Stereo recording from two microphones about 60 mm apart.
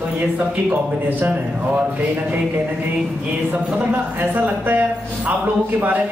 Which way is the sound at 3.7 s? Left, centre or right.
Right.